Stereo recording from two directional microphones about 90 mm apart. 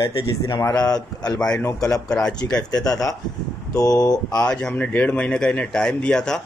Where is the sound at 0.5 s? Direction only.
40° left (ahead or behind).